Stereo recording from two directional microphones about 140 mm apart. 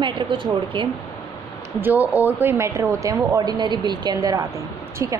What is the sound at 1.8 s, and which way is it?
A woman's voice, 10° right (ahead or behind).